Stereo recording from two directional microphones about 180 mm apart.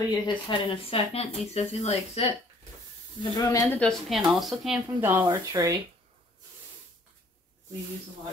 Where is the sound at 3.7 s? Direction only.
Centre (ahead or behind); by 5.8 s 20° right (ahead or behind).